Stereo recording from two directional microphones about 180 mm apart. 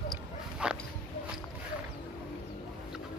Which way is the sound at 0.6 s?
5° right (ahead or behind).